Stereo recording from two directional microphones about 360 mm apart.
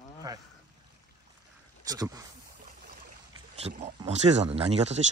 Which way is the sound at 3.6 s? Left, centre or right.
Centre.